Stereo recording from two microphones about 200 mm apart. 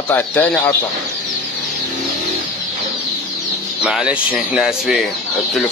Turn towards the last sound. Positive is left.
turn(degrees=0)  # may be behind; listen again after turning